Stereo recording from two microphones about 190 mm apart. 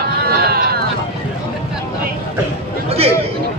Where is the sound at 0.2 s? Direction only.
55° right (ahead or behind).